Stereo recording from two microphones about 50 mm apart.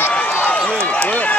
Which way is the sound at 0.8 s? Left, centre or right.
Left.